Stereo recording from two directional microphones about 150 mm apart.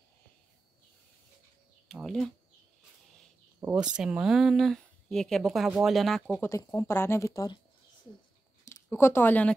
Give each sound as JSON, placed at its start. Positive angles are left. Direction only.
{"t": 1.9, "sound": "speech", "side_deg": 0}
{"t": 3.6, "sound": "speech", "side_deg": -5}
{"t": 6.4, "sound": "speech", "side_deg": 20}
{"t": 8.8, "sound": "speech", "side_deg": 15}